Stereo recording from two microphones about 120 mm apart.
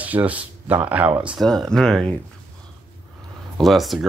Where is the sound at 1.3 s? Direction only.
Centre (ahead or behind).